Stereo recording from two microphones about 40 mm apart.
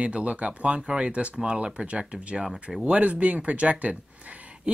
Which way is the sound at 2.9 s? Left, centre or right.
Right.